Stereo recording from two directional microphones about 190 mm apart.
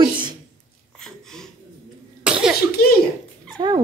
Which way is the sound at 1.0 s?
5° left (ahead or behind).